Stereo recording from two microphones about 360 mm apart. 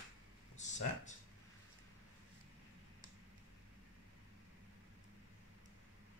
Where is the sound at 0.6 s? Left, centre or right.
Centre.